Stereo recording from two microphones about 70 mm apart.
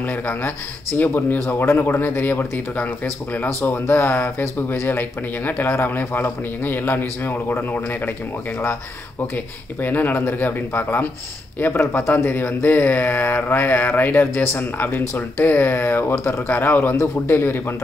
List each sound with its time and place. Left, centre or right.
0.0 s speech: left
9.8 s a man's voice: left